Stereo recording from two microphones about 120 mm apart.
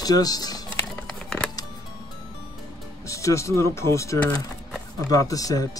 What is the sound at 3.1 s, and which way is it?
Speech, 25° left (ahead or behind).